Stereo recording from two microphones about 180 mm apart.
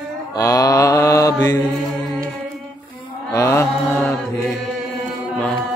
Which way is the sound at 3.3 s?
15° left (ahead or behind).